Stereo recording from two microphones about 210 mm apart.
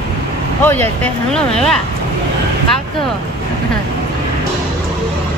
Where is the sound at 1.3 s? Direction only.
5° left (ahead or behind).